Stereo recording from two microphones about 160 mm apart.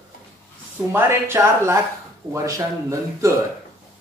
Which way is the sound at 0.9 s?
15° right (ahead or behind).